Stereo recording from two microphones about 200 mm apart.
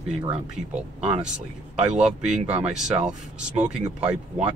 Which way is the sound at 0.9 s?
35° right (ahead or behind).